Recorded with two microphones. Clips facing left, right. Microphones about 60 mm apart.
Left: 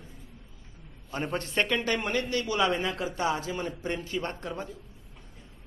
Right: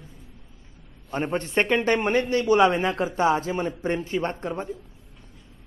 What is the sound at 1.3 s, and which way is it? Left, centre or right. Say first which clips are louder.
A man's voice: right 5 dB; right.